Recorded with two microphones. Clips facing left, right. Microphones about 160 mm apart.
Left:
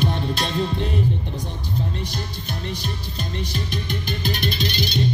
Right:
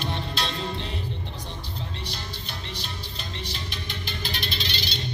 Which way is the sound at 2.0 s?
45° left (ahead or behind).